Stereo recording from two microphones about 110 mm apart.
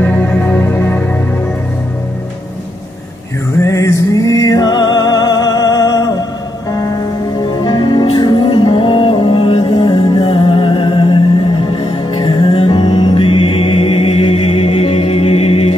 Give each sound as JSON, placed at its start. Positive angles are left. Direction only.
{"t": 0.0, "sound": "music", "side_deg": 15}
{"t": 3.6, "sound": "music", "side_deg": 30}
{"t": 7.6, "sound": "music", "side_deg": 45}